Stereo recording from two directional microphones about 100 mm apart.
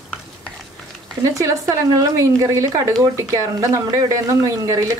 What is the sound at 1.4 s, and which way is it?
A woman's voice, 35° right (ahead or behind).